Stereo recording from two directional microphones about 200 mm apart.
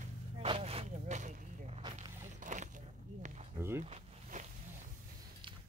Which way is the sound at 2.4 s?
40° right (ahead or behind).